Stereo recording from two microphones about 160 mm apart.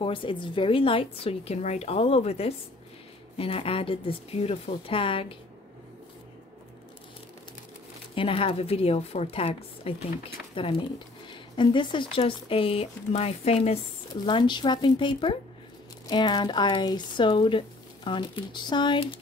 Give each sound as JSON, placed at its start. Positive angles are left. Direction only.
{"t": 0.0, "sound": "speech", "side_deg": 35}
{"t": 8.1, "sound": "speech", "side_deg": 35}